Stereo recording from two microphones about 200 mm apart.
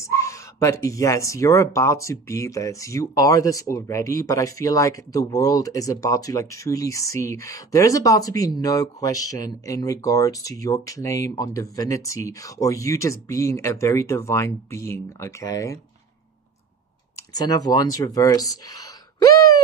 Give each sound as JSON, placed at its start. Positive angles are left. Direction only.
{"t": 0.0, "sound": "speech", "side_deg": 15}
{"t": 17.3, "sound": "speech", "side_deg": 20}